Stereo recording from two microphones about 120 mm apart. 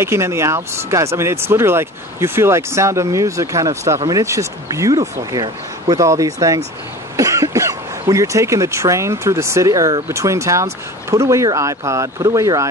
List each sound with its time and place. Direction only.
0.0 s speech: 20° right (ahead or behind)